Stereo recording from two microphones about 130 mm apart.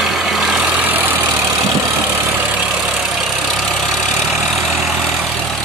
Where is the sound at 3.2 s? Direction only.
Centre (ahead or behind).